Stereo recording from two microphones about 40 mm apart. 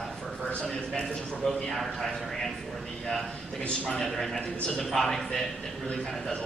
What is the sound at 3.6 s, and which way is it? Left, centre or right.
Speech, left.